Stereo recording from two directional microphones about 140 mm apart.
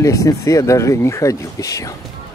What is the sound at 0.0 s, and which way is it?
Speech, 20° left (ahead or behind).